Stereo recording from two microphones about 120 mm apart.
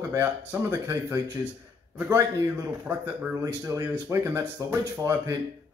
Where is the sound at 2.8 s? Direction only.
15° right (ahead or behind).